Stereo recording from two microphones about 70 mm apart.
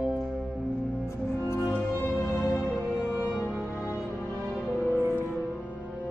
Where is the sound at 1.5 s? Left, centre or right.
Left.